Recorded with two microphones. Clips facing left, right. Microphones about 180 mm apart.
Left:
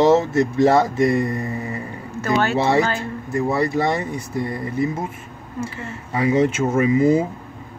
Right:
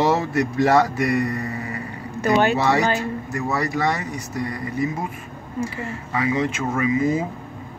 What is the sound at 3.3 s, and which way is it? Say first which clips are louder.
Speech: left 5 dB; 30° left (ahead or behind).